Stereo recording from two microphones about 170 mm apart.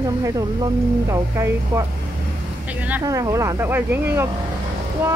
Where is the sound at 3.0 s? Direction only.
20° right (ahead or behind).